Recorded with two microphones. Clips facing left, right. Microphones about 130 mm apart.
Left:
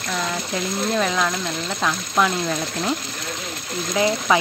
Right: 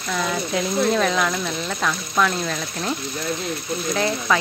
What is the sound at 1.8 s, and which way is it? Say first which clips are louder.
Speech: left 1 dB; 15° left (ahead or behind).